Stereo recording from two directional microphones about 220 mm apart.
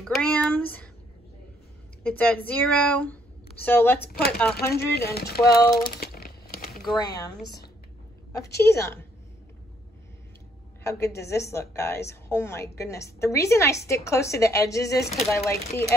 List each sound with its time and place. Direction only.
0.0 s a woman's voice: 5° left (ahead or behind)
2.0 s a woman's voice: 5° left (ahead or behind)
4.7 s speech: 45° left (ahead or behind)
5.5 s a woman's voice: 15° left (ahead or behind)
5.9 s a sound: 45° left (ahead or behind)
6.7 s a sound: centre (ahead or behind)
7.0 s a woman's voice: 20° left (ahead or behind)
8.6 s a woman's voice: 10° left (ahead or behind)
10.8 s a woman's voice: 10° left (ahead or behind)